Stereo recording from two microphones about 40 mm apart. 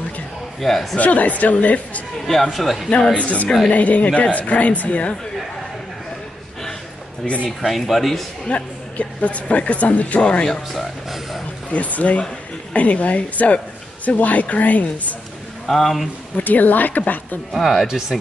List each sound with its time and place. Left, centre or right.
0.6 s speech: centre
0.9 s speech: left
2.2 s speech: centre
3.2 s speech: left
7.4 s speech: centre
8.5 s speech: left
10.5 s speech: centre
11.7 s speech: left
15.6 s speech: centre
16.4 s a woman's voice: left
17.5 s speech: centre